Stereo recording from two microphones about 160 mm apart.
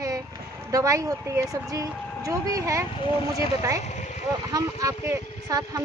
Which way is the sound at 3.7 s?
45° left (ahead or behind).